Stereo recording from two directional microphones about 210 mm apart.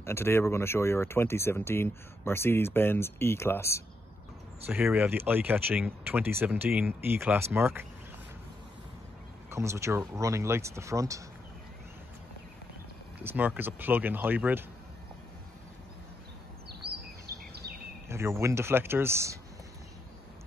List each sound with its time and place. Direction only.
0.0 s speech: 10° left (ahead or behind)
4.6 s speech: 10° right (ahead or behind)
9.5 s speech: 15° right (ahead or behind)
13.2 s speech: 10° right (ahead or behind)
16.6 s bird vocalization: 50° right (ahead or behind)
18.0 s speech: 10° right (ahead or behind)